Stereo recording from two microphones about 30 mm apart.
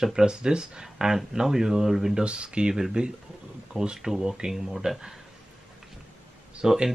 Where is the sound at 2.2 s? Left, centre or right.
Right.